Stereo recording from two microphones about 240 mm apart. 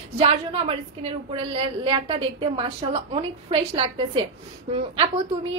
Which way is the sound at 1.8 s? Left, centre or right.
Right.